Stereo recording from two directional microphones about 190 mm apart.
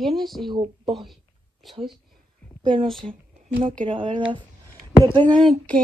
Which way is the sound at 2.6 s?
25° right (ahead or behind).